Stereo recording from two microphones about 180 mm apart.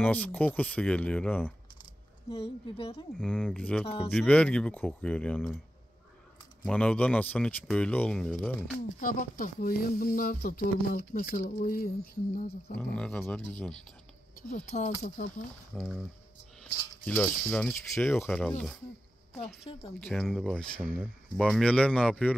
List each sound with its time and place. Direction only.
0.0 s speech: 10° left (ahead or behind)
2.2 s a woman's voice: 30° left (ahead or behind)
3.2 s speech: 5° right (ahead or behind)
6.7 s speech: 5° left (ahead or behind)
8.8 s speech: 50° left (ahead or behind)
12.7 s speech: 5° left (ahead or behind)
14.5 s speech: 45° left (ahead or behind)
15.7 s speech: 5° left (ahead or behind)
17.0 s speech: 10° left (ahead or behind)
19.3 s a woman's voice: 35° left (ahead or behind)
20.1 s speech: centre (ahead or behind)